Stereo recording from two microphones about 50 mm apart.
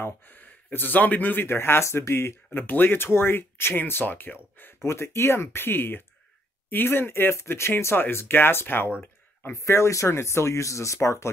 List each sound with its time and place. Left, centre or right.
0.0 s speech: left
2.5 s speech: left
4.0 s speech: left
4.8 s speech: left
9.0 s a sound: left
9.6 s speech: left